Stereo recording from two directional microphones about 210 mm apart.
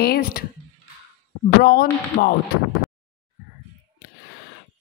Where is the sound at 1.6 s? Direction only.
45° left (ahead or behind).